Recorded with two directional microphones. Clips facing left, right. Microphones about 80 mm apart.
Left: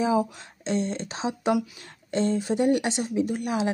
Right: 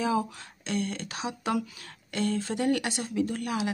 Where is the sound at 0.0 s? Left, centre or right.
Centre.